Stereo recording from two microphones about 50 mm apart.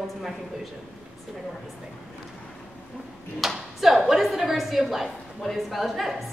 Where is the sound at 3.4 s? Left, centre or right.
Centre.